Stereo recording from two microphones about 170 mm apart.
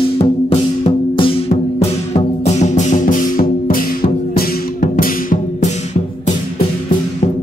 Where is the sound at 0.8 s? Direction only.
35° left (ahead or behind); by 5.7 s 55° left (ahead or behind).